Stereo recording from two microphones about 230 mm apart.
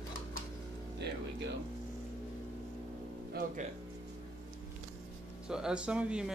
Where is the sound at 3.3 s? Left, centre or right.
Right.